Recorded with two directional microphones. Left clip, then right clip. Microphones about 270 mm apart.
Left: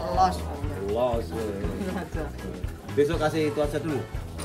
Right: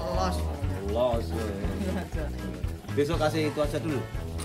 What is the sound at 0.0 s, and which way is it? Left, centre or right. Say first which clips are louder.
Music: left 6 dB; centre.